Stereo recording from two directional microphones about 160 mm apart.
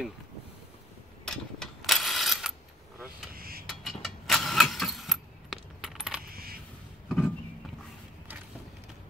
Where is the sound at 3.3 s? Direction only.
70° right (ahead or behind).